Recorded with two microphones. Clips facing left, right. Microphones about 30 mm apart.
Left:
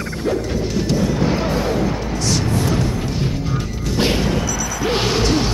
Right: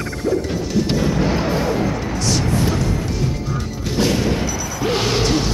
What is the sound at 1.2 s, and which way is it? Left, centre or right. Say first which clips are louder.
Music: even; centre.